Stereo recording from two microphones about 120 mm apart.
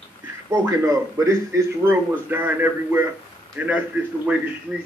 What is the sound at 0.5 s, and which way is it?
A man's voice, 25° right (ahead or behind).